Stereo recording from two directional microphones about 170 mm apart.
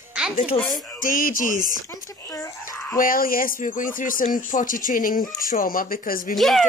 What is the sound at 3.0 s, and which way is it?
Speech, 55° left (ahead or behind).